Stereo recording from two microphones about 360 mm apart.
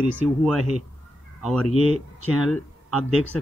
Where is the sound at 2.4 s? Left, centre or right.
Centre.